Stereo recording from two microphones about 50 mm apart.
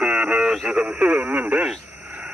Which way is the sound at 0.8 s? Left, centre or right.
Right.